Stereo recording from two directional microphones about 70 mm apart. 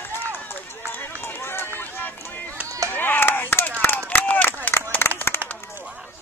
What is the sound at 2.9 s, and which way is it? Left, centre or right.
Chop, left.